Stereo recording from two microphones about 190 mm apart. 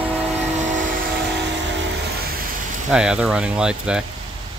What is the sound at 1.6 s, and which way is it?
Music, 70° right (ahead or behind).